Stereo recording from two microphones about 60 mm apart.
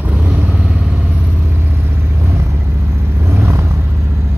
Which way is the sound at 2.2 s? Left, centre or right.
Right.